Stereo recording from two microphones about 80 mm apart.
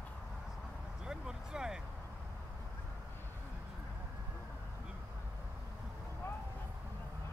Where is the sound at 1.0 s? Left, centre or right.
Centre.